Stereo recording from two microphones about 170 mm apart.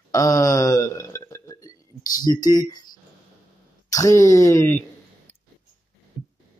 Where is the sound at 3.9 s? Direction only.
20° left (ahead or behind).